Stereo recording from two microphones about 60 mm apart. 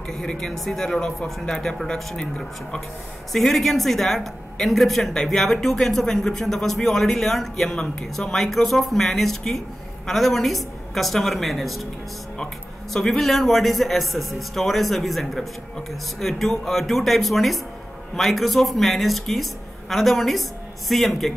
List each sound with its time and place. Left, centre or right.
0.1 s speech: centre
3.3 s speech: centre
12.9 s speech: centre